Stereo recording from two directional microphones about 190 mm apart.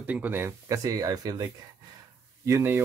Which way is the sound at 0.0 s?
10° right (ahead or behind).